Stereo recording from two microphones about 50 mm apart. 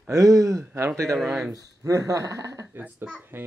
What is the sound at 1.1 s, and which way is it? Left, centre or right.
Speech, centre.